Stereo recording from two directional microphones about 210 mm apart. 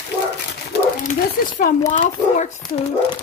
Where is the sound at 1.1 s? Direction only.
35° left (ahead or behind).